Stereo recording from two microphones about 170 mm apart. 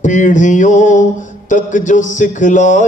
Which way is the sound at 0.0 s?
50° left (ahead or behind).